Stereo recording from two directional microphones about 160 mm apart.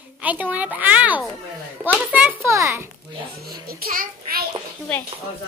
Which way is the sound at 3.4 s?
70° right (ahead or behind).